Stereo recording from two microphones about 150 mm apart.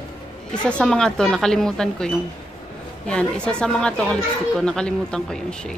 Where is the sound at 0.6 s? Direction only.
5° left (ahead or behind).